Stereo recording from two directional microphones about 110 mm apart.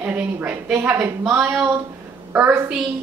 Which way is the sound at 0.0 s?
15° right (ahead or behind).